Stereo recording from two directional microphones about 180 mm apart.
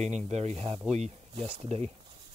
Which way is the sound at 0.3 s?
40° right (ahead or behind).